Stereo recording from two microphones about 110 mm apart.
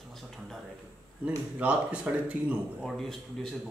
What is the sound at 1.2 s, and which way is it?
Speech, 10° right (ahead or behind).